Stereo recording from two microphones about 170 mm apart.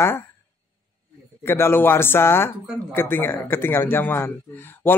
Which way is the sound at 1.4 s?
15° left (ahead or behind).